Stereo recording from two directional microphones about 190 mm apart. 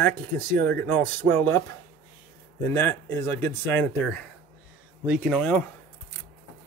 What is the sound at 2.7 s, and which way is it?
Speech, 10° left (ahead or behind).